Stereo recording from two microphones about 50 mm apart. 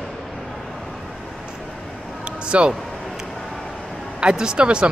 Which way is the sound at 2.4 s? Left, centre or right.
Right.